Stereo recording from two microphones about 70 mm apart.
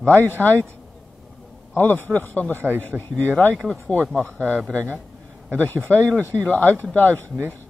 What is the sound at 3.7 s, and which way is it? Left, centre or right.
Speech, centre.